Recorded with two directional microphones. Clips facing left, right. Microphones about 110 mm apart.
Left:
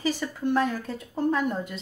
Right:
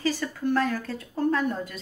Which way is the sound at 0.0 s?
15° left (ahead or behind).